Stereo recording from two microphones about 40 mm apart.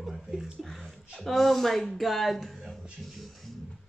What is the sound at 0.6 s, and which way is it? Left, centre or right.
Speech, centre.